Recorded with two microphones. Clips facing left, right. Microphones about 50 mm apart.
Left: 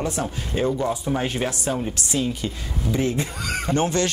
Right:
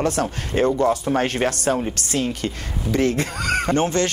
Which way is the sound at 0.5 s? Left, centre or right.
Right.